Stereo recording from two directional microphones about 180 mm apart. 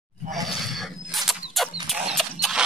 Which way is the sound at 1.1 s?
Centre (ahead or behind).